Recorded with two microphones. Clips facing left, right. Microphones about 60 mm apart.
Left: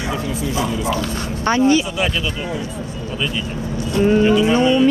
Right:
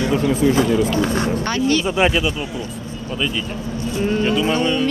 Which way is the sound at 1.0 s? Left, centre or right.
Right.